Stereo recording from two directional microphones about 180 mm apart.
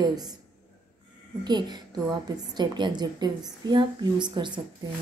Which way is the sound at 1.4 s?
25° right (ahead or behind).